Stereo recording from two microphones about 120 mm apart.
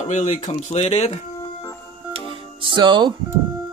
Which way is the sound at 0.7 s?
60° left (ahead or behind).